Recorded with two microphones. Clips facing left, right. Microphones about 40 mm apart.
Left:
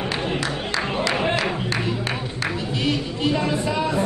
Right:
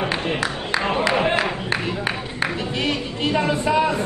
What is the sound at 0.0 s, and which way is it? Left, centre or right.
Music, right.